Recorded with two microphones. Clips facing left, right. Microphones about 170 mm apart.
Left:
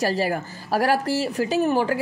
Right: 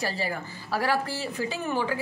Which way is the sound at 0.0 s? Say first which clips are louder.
Left 8 dB; 40° left (ahead or behind).